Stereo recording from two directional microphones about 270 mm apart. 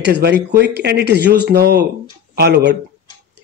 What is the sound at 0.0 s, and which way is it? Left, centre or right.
Speech, right.